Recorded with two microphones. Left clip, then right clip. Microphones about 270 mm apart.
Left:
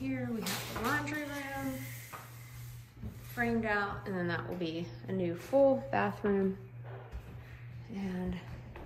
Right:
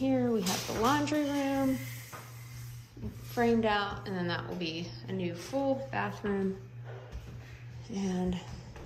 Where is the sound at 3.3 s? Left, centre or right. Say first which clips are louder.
Right 5 dB; centre.